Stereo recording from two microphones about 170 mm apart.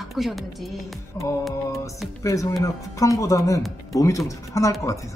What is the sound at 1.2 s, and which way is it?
Speech, 20° left (ahead or behind).